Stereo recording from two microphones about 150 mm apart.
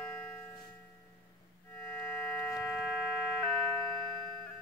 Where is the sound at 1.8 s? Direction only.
5° left (ahead or behind).